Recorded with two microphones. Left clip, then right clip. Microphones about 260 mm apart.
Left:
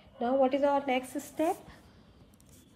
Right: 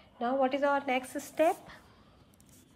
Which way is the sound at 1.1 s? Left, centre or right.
Centre.